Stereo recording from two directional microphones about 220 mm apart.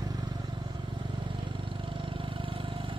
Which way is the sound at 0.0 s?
15° right (ahead or behind).